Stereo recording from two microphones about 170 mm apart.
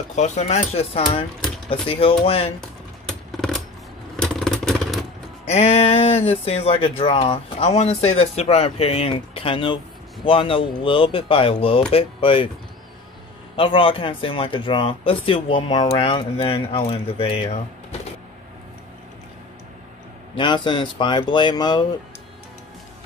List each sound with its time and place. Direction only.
0.1 s speech: 45° left (ahead or behind)
3.1 s a sound: 5° left (ahead or behind)
4.2 s vehicle: 5° left (ahead or behind)
5.5 s speech: 40° left (ahead or behind)
13.6 s speech: 30° left (ahead or behind)
20.3 s speech: 30° left (ahead or behind)